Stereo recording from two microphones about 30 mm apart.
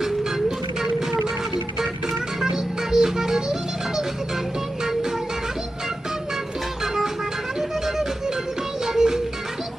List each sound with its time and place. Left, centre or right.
2.5 s music: centre
8.8 s music: centre